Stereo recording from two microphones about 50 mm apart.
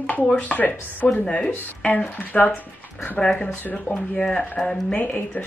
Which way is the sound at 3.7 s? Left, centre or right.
Left.